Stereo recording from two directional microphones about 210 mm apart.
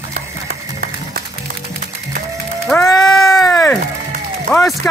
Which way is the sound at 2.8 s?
20° left (ahead or behind).